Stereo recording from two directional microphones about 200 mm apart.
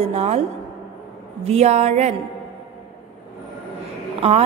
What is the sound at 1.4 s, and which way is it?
Speech, 30° right (ahead or behind).